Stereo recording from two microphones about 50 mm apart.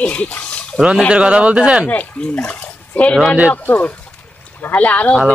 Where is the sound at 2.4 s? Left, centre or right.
Left.